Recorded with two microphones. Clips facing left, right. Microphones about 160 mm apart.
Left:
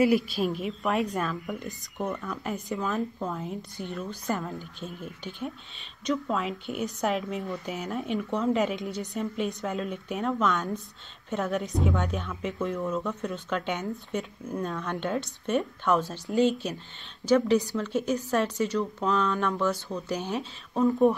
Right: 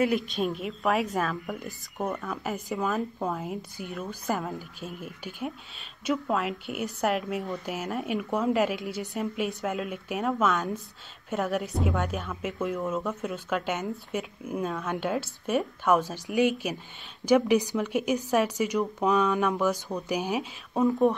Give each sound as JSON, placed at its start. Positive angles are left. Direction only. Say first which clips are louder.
{"t": 0.0, "sound": "speech", "louder": "left 2 dB", "side_deg": 0}
{"t": 2.0, "sound": "a woman's voice", "louder": "right 1 dB", "side_deg": -15}
{"t": 2.4, "sound": "a woman's voice", "louder": "right 1 dB", "side_deg": 0}